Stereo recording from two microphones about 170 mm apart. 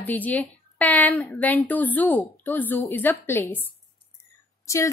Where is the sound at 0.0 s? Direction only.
10° left (ahead or behind).